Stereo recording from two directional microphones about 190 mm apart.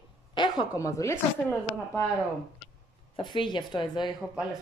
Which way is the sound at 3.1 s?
25° left (ahead or behind).